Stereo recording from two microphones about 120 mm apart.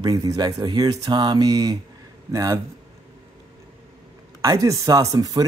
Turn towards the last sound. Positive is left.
turn(degrees=-30)  # may be behind; listen again after turning